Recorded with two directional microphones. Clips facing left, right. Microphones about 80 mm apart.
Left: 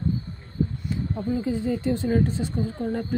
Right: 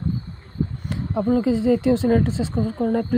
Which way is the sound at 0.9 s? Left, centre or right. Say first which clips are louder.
Right 6 dB; right.